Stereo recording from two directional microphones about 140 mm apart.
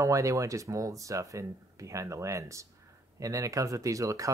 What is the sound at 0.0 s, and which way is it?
Speech, 20° right (ahead or behind).